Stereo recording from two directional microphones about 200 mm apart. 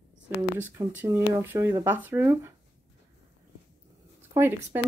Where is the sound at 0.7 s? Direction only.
15° right (ahead or behind).